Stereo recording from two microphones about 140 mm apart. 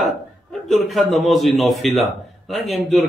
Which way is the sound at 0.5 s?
Centre (ahead or behind).